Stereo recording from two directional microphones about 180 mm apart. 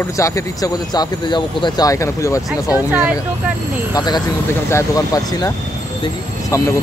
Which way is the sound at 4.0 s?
20° left (ahead or behind).